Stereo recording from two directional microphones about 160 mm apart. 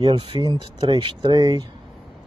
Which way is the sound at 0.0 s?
30° right (ahead or behind).